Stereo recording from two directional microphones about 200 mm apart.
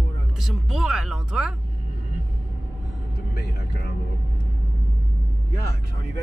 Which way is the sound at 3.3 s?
55° left (ahead or behind).